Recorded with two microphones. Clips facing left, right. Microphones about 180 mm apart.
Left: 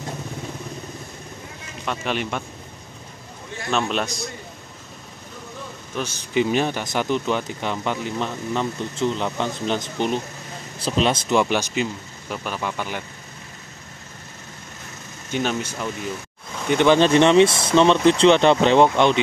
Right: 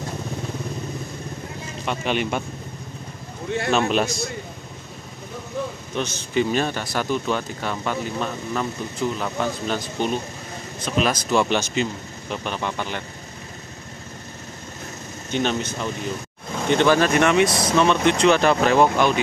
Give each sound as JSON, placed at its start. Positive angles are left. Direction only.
{"t": 1.9, "sound": "a man's voice", "side_deg": 0}
{"t": 3.7, "sound": "a man's voice", "side_deg": -5}
{"t": 5.9, "sound": "speech", "side_deg": 10}
{"t": 10.8, "sound": "speech", "side_deg": 30}
{"t": 15.3, "sound": "speech", "side_deg": 10}